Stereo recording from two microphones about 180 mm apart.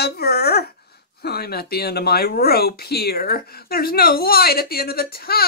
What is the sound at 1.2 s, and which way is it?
Speech, 60° left (ahead or behind).